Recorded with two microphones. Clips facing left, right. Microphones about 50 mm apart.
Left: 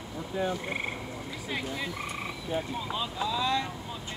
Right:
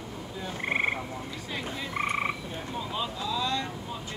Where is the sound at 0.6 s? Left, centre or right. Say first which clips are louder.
Right 6 dB; right.